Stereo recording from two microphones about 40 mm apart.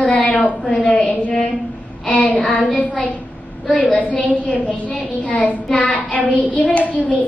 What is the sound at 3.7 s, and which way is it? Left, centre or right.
A child's voice, left.